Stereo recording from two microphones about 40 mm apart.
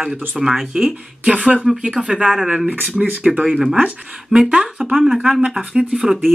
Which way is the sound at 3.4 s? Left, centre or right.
Centre.